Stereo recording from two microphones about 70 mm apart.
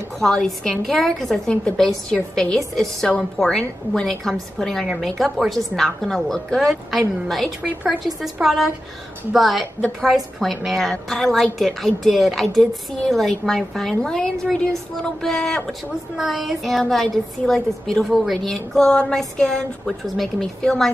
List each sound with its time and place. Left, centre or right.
0.2 s speech: centre
1.5 s speech: centre
1.8 s a woman's voice: centre
16.2 s a woman's voice: centre